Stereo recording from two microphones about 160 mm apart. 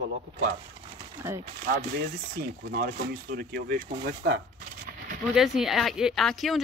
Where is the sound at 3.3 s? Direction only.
80° right.